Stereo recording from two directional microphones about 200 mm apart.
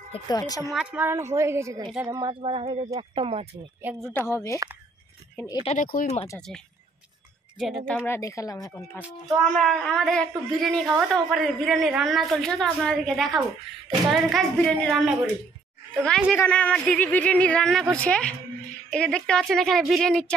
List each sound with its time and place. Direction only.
0.1 s speech: 20° left (ahead or behind)
0.7 s a woman's voice: 5° right (ahead or behind); by 3.4 s 30° right (ahead or behind)
3.8 s a woman's voice: 10° right (ahead or behind)
4.3 s speech: 15° left (ahead or behind)
5.5 s speech: 30° left (ahead or behind)
5.8 s speech: 40° left (ahead or behind)
7.5 s speech: centre (ahead or behind)
9.0 s a woman's voice: centre (ahead or behind)
16.3 s a woman's voice: 10° left (ahead or behind)